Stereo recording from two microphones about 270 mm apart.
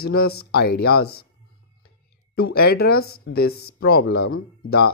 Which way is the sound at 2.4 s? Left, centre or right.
Left.